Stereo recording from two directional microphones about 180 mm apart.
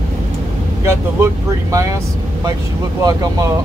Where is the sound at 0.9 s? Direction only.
15° right (ahead or behind).